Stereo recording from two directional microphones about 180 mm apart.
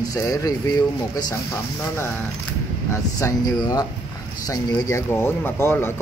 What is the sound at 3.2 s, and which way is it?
Speech, 20° left (ahead or behind).